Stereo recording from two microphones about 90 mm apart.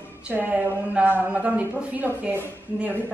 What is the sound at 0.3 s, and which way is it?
Speech, 20° right (ahead or behind).